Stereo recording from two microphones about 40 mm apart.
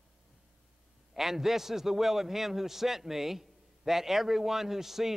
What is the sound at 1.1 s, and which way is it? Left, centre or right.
A man's voice, centre.